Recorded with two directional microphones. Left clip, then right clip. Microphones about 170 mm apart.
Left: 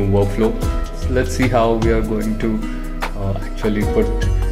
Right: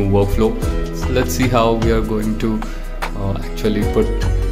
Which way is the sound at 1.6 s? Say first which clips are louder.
Right 1 dB; 20° right (ahead or behind).